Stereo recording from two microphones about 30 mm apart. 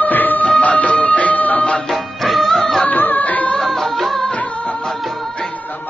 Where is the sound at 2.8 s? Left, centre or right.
Left.